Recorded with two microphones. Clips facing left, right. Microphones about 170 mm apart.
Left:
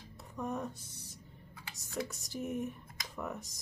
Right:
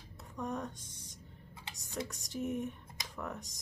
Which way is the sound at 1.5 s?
20° right (ahead or behind).